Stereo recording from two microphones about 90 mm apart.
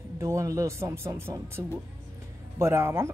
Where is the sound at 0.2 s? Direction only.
35° right (ahead or behind).